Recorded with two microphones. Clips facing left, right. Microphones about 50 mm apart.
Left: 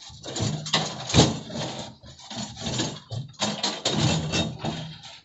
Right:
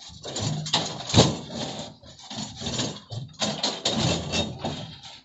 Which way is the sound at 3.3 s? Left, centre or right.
Left.